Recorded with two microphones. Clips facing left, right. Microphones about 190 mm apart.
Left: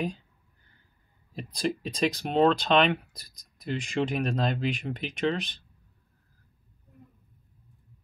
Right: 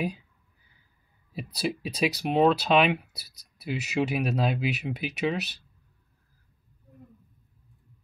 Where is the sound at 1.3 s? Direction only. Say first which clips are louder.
Left 1 dB; 5° right (ahead or behind).